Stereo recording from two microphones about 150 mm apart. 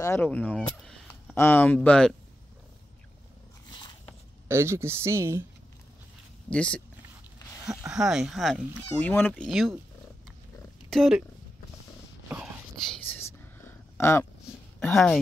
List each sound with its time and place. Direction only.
0.0 s speech: 15° left (ahead or behind)
4.5 s a woman's voice: 15° right (ahead or behind)
6.5 s speech: 5° left (ahead or behind)
7.8 s speech: 5° right (ahead or behind)
9.0 s speech: 10° left (ahead or behind)
9.4 s speech: centre (ahead or behind)
10.9 s speech: centre (ahead or behind)
13.6 s a sound: 15° left (ahead or behind)
14.8 s speech: 5° left (ahead or behind)